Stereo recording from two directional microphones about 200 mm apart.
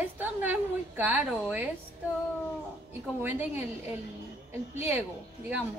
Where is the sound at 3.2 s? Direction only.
10° right (ahead or behind).